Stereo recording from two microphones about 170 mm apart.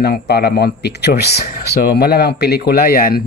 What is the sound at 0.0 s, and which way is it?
Speech, 70° left (ahead or behind).